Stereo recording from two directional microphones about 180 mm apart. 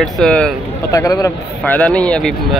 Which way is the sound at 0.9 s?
15° left (ahead or behind).